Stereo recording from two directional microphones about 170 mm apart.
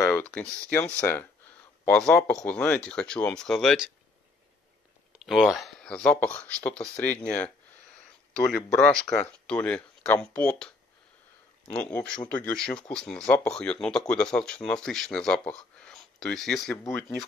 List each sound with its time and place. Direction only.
0.0 s speech: 10° left (ahead or behind)
5.1 s speech: centre (ahead or behind)
11.7 s speech: 5° left (ahead or behind)
16.7 s speech: 15° left (ahead or behind)